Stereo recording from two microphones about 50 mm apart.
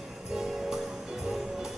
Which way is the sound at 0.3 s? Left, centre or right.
Centre.